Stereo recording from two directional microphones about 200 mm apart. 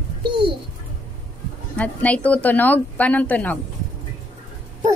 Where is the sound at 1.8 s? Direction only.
5° left (ahead or behind).